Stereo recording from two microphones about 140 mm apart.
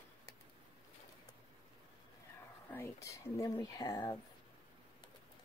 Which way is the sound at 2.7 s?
20° left (ahead or behind).